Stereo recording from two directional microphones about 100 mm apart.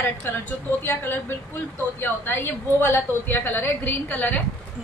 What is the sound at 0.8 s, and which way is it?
A woman's voice, 25° left (ahead or behind).